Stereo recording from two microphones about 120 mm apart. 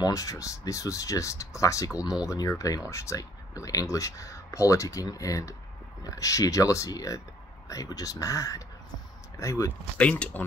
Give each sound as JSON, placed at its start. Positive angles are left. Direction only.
{"t": 0.0, "sound": "speech", "side_deg": 30}
{"t": 9.9, "sound": "speech", "side_deg": 10}